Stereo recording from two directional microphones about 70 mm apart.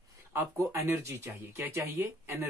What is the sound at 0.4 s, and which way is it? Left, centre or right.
Speech, right.